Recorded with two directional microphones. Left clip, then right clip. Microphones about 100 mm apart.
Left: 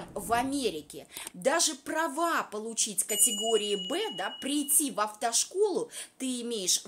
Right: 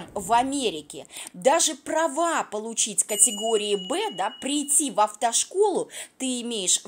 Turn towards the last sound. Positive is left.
turn(degrees=-40)  # may be behind; listen again after turning